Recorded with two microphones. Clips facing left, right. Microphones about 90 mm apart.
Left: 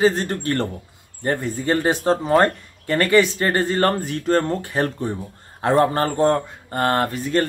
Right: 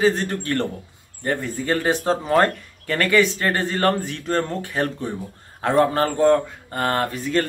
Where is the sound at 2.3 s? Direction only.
20° left (ahead or behind).